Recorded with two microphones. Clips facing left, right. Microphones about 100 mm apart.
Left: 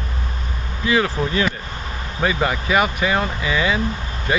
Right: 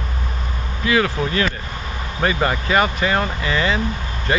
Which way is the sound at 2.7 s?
10° left (ahead or behind).